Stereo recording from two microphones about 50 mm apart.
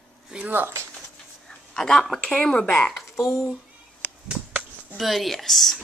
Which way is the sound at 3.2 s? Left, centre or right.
Left.